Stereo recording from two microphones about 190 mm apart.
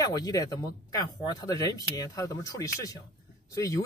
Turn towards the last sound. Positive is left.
turn(degrees=15)  # may be behind; listen again after turning